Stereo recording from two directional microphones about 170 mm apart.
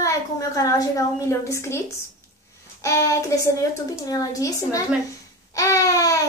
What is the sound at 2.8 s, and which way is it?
Child singing, 20° left (ahead or behind).